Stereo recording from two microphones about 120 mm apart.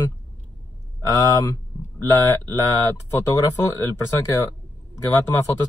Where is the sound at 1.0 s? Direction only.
30° left (ahead or behind).